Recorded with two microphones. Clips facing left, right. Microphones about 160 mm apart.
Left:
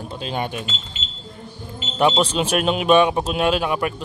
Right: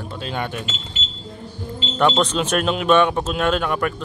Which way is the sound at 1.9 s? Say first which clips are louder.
Even; 10° left (ahead or behind).